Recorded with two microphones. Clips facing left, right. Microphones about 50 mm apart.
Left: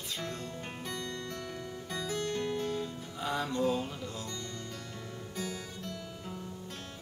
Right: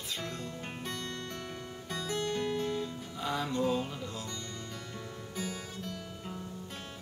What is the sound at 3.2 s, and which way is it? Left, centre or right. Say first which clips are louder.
Music: even; centre.